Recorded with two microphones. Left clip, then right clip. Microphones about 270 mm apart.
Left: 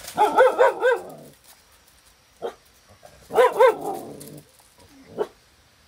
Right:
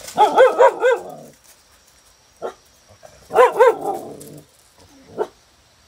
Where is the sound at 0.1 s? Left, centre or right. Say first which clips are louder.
Right 5 dB; centre.